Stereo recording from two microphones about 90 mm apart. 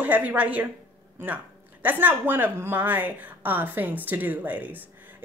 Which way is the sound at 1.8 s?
20° right (ahead or behind).